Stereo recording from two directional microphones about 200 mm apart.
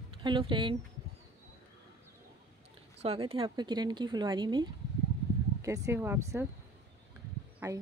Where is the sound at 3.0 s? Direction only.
30° right (ahead or behind); by 6.4 s 10° right (ahead or behind).